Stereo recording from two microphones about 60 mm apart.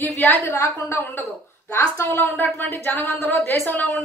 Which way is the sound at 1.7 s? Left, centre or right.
Left.